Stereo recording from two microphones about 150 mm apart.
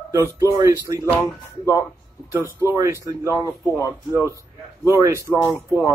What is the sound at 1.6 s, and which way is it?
Speech, 20° left (ahead or behind).